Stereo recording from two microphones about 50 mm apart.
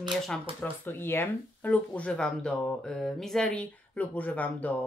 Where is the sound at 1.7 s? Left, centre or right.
Left.